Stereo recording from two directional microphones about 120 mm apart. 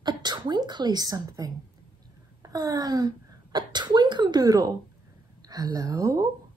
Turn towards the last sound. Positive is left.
turn(degrees=-30)  # may be behind; listen again after turning